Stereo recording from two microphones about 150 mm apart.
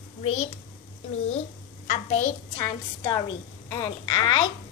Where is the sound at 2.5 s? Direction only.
25° left (ahead or behind).